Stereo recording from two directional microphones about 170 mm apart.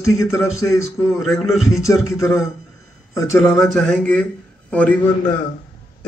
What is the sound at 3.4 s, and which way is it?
A man's voice, centre (ahead or behind).